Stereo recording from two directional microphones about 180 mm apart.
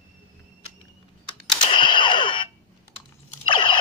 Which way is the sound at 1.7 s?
25° left (ahead or behind).